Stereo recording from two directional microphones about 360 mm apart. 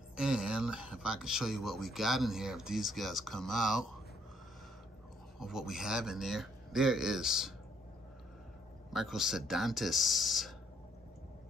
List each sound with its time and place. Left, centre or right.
0.1 s speech: centre
5.4 s speech: centre
8.9 s speech: centre